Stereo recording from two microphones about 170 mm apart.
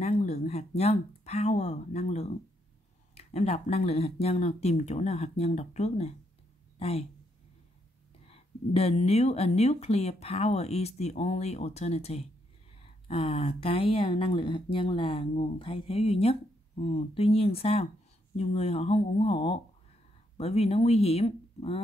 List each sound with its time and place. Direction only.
0.0 s a woman's voice: 40° left (ahead or behind)
8.3 s speech: 35° left (ahead or behind)